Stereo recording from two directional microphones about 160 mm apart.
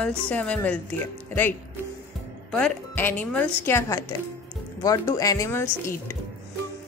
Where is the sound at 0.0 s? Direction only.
10° left (ahead or behind).